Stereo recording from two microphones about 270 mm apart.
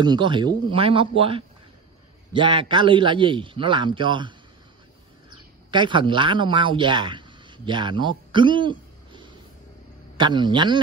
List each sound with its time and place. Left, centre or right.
0.0 s a man's voice: centre
5.7 s a man's voice: centre